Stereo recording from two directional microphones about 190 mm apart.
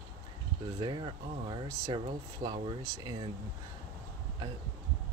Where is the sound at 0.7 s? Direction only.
25° right (ahead or behind).